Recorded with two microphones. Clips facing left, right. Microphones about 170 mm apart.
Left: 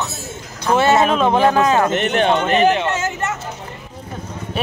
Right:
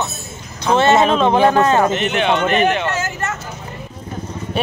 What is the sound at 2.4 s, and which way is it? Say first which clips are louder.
Speech: left 1 dB; 30° left (ahead or behind).